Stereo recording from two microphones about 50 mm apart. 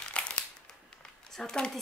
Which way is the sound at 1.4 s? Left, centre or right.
Centre.